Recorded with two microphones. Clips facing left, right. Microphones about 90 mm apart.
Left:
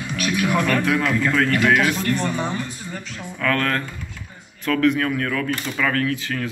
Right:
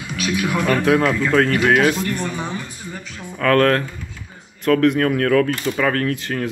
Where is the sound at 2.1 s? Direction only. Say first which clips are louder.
Left 2 dB; 5° right (ahead or behind).